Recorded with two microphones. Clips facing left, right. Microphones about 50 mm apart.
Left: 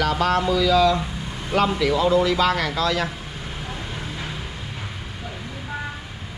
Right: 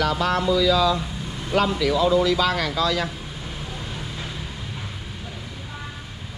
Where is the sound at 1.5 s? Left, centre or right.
Left.